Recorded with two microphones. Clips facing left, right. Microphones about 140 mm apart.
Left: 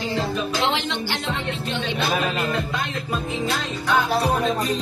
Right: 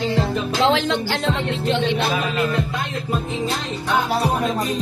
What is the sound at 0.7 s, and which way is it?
A woman's voice, 90° right.